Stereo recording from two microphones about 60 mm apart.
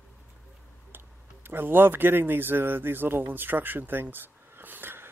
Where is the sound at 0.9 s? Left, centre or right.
Right.